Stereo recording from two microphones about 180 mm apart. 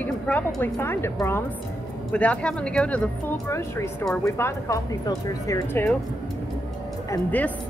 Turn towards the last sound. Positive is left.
turn(degrees=10)  # may be behind; listen again after turning